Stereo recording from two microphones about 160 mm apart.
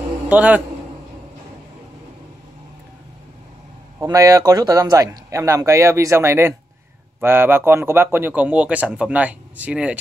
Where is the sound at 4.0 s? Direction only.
20° right (ahead or behind).